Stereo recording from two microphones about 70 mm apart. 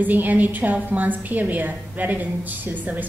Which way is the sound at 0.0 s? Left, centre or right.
Right.